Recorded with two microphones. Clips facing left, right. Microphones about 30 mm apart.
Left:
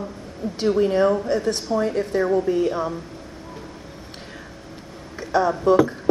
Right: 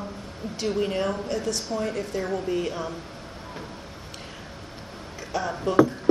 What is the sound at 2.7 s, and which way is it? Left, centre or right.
Speech, left.